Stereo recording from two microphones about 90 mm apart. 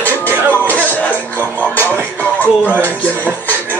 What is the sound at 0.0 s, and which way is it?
Music, 20° left (ahead or behind).